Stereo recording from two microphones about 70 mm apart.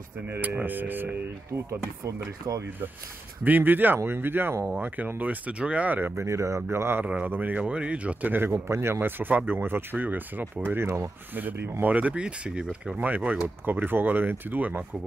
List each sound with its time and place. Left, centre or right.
0.3 s speech: right
1.5 s speech: right
3.4 s speech: right
6.2 s speech: right
7.2 s speech: right
8.6 s speech: right; by 12.6 s centre
12.9 s speech: right